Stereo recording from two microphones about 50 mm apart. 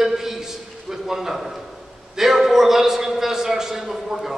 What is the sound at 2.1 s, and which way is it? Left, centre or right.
A man's voice, centre.